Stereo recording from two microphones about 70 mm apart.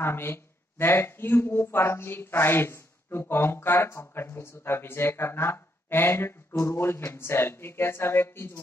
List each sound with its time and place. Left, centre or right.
0.0 s speech: left